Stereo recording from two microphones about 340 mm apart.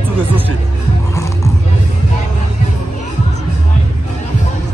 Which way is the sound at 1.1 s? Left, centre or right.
Centre.